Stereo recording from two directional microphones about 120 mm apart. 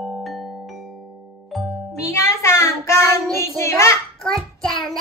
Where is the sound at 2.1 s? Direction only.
25° left (ahead or behind).